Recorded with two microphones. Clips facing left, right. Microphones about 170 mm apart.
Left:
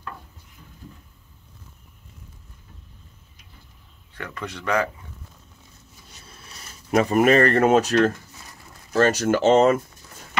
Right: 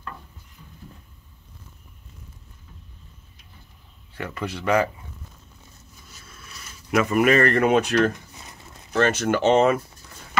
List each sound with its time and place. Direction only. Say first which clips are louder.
4.1 s speech: right 3 dB; 10° right (ahead or behind)
6.2 s speech: even; 30° left (ahead or behind)
8.1 s a sound: even; 20° right (ahead or behind)
8.9 s speech: left 2 dB; 40° left (ahead or behind)